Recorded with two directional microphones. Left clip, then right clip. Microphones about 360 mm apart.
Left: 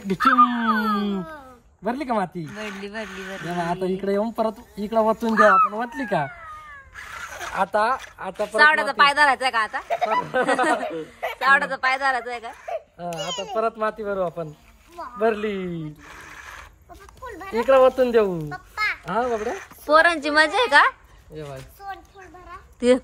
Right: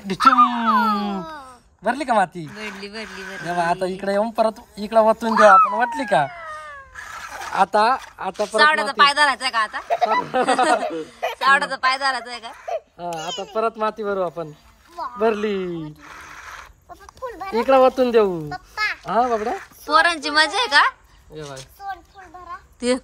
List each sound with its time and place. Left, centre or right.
0.0 s speech: centre
2.5 s speech: centre
3.5 s speech: right
7.0 s a sound: centre
7.5 s speech: right
8.5 s speech: centre
9.8 s speech: centre
11.4 s speech: centre
12.6 s speech: right
16.3 s a sound: centre
17.4 s speech: centre
19.9 s speech: centre
22.8 s speech: centre